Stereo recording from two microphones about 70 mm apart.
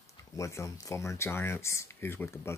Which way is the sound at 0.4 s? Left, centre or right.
Left.